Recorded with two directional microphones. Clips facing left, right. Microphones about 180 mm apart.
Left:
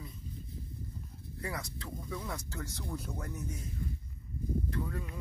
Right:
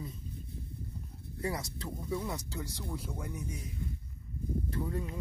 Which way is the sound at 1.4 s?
25° right (ahead or behind).